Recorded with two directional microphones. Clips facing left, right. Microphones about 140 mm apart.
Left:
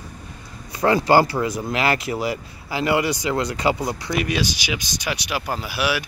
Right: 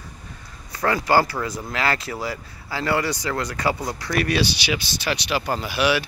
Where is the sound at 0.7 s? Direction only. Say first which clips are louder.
Left 3 dB; 25° left (ahead or behind).